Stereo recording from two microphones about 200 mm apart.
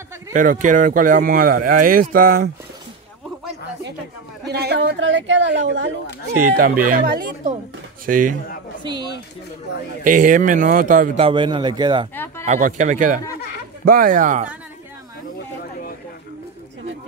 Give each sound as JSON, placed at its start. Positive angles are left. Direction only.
{"t": 0.3, "sound": "speech", "side_deg": -40}
{"t": 4.5, "sound": "a woman's voice", "side_deg": -55}
{"t": 6.5, "sound": "speech", "side_deg": -45}
{"t": 8.8, "sound": "speech", "side_deg": -20}
{"t": 10.0, "sound": "speech", "side_deg": -40}
{"t": 11.1, "sound": "speech", "side_deg": -25}
{"t": 12.4, "sound": "speech", "side_deg": -40}